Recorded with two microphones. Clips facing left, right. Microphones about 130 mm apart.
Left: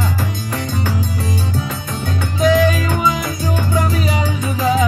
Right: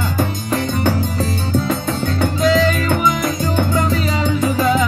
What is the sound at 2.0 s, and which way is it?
Music, 15° left (ahead or behind).